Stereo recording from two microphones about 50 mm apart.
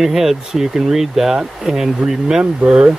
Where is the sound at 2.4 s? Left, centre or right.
Right.